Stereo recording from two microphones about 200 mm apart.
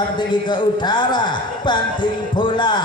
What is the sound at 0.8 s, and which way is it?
A man's voice, 20° left (ahead or behind).